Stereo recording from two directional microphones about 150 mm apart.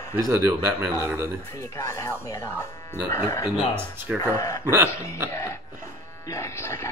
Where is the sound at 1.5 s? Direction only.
20° left (ahead or behind).